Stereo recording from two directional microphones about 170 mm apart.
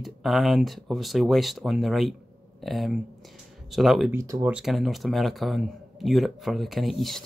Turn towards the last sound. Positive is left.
turn(degrees=0)  # may be behind; listen again after turning